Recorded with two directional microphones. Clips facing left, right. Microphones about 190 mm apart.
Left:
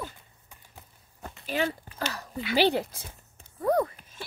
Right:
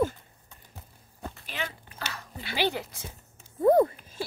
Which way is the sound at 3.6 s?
30° right (ahead or behind).